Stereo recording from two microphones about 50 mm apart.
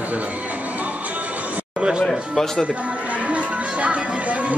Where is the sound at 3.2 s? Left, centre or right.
Right.